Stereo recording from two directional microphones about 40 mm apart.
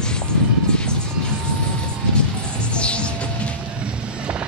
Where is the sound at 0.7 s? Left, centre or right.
Left.